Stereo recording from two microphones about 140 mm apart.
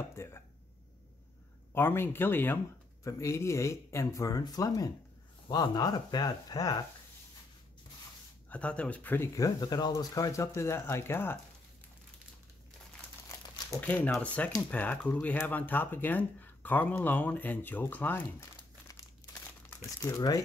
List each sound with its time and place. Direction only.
0.1 s speech: 20° left (ahead or behind)
1.7 s speech: 15° left (ahead or behind)
8.5 s speech: 10° left (ahead or behind)
13.7 s speech: 10° left (ahead or behind)
18.6 s crumpling: 25° left (ahead or behind)
19.8 s speech: 20° left (ahead or behind)